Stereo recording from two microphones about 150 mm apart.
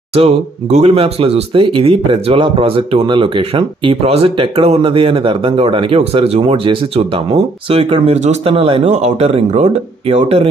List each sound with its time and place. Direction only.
0.1 s speech: 45° right (ahead or behind)